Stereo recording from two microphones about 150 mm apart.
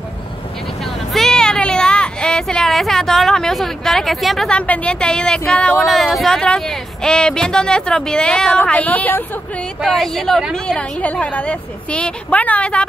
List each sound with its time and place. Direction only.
1.1 s a child's voice: 5° left (ahead or behind)